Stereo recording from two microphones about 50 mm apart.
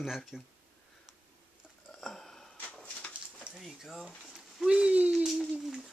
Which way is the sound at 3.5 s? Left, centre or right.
Centre.